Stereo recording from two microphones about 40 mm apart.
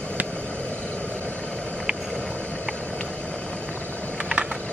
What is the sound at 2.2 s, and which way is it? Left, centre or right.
Vehicle, left.